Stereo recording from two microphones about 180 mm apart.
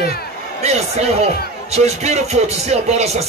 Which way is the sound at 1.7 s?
35° right (ahead or behind).